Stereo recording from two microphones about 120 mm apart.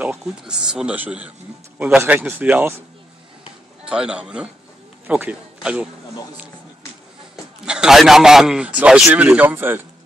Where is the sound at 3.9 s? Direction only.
5° right (ahead or behind).